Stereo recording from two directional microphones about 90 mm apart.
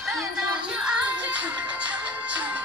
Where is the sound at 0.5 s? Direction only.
10° right (ahead or behind).